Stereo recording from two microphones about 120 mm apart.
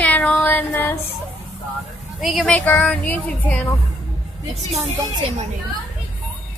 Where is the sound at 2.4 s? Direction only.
10° left (ahead or behind).